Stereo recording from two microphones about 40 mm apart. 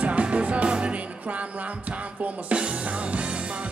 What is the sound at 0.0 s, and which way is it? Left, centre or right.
Music, right.